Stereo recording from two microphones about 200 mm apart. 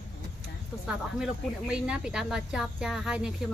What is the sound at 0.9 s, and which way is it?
Speech, 5° right (ahead or behind).